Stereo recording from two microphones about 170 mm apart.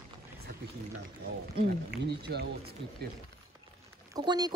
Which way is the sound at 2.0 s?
75° right (ahead or behind).